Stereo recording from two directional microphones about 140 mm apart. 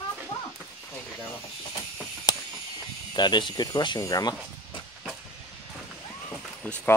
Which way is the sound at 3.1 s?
30° left (ahead or behind).